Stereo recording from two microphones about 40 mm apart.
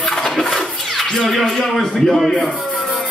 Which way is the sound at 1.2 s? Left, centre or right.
Centre.